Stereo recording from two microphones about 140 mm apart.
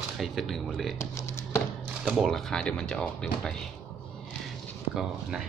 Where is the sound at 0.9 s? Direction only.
20° left (ahead or behind).